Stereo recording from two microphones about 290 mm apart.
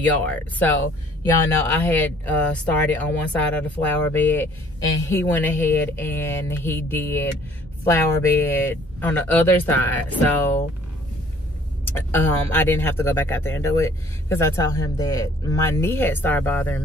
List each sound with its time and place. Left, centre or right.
0.0 s speech: centre
12.1 s speech: centre